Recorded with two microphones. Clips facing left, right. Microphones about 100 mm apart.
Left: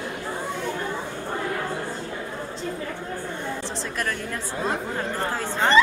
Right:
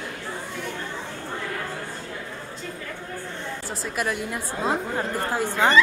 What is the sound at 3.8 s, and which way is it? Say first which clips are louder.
Speech: right 6 dB; 10° right (ahead or behind).